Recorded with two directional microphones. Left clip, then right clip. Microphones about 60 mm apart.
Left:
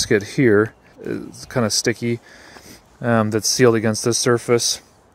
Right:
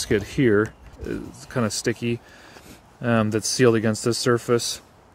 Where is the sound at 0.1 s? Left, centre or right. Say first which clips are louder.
Left 4 dB; left.